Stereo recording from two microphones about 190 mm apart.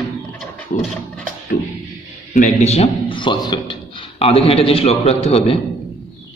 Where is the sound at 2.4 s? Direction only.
35° left (ahead or behind).